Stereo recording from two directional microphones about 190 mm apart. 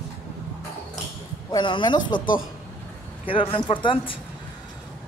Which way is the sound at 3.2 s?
30° left (ahead or behind).